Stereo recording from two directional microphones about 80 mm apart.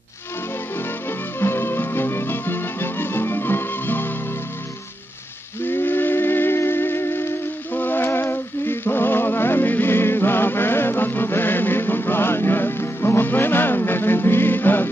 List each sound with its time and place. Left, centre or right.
0.7 s music: left
5.6 s music: left